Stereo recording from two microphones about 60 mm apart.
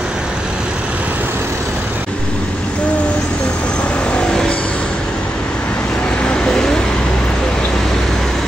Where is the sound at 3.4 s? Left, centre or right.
Centre.